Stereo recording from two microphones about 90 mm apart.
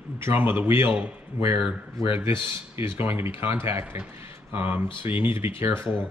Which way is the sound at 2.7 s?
25° right (ahead or behind).